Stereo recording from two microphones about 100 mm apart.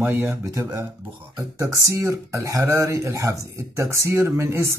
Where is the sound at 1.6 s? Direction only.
35° right (ahead or behind).